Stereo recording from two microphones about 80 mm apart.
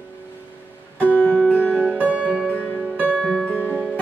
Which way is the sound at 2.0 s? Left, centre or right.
Centre.